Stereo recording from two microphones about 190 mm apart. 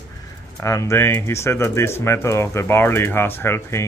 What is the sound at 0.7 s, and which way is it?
Speech, 15° left (ahead or behind).